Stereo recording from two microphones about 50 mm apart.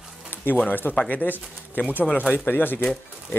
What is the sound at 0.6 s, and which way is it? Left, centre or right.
Speech, left.